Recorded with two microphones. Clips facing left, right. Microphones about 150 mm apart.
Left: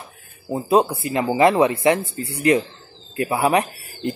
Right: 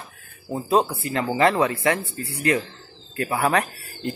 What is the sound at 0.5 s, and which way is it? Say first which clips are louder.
Speech: left 3 dB; 15° left (ahead or behind).